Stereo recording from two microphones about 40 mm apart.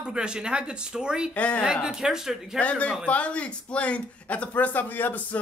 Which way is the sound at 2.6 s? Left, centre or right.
Left.